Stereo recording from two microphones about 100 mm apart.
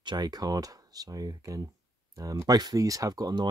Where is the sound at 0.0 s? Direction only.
45° right (ahead or behind).